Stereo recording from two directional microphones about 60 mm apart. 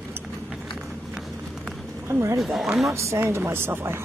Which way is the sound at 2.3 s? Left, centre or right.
Centre.